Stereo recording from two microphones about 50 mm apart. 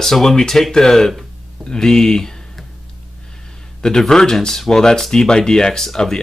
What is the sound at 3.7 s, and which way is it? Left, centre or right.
Speech, centre.